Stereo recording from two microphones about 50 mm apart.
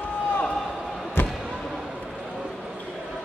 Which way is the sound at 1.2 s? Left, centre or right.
Left.